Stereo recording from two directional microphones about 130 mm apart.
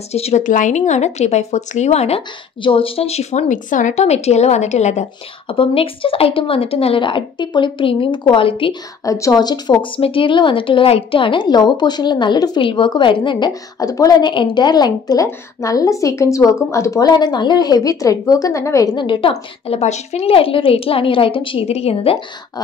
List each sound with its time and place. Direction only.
0.1 s speech: 55° left (ahead or behind)
0.4 s speech: 80° left; by 5.0 s 60° left (ahead or behind)
5.5 s speech: 45° left (ahead or behind)
9.0 s speech: 25° left (ahead or behind)
13.5 s a woman's voice: 25° left (ahead or behind)
19.3 s speech: 55° left (ahead or behind)